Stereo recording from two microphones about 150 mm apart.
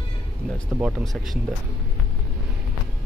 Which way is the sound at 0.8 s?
Centre (ahead or behind).